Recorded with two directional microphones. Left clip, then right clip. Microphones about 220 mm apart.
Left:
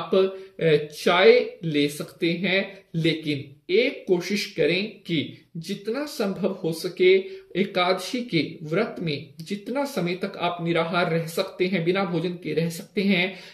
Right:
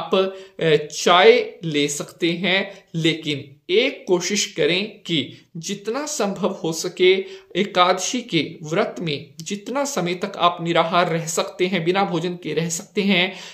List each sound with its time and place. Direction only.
0.1 s speech: 5° right (ahead or behind)